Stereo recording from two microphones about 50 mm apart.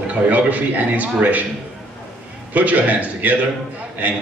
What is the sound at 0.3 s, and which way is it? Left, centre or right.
A man's voice, right.